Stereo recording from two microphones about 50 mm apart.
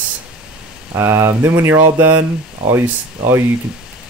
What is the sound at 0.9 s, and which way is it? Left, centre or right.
Speech, right.